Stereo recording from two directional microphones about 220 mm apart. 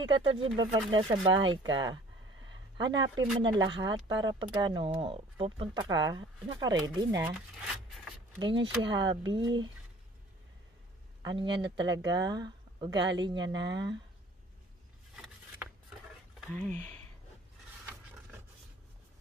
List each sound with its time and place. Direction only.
0.0 s speech: 20° right (ahead or behind); by 8.1 s 5° right (ahead or behind)
8.4 s speech: 20° right (ahead or behind)
11.2 s speech: 20° right (ahead or behind)
16.3 s speech: 5° left (ahead or behind)